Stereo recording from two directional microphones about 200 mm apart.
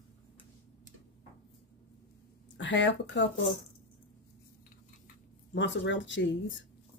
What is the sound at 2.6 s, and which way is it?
Speech, 65° left (ahead or behind).